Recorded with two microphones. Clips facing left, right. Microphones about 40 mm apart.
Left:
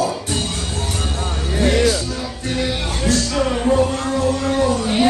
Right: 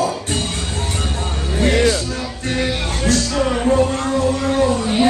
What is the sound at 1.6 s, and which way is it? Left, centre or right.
Speech, right.